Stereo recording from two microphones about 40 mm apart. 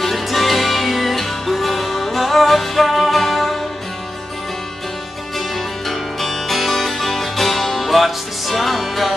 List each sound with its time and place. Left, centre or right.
0.0 s music: centre
5.9 s music: centre